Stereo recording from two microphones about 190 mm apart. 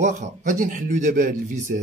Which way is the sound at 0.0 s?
40° right (ahead or behind).